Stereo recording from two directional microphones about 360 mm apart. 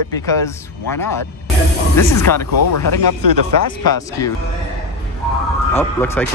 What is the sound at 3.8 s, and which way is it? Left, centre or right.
Speech, centre.